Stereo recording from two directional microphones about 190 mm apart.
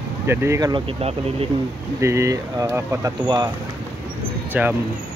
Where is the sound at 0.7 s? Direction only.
30° right (ahead or behind).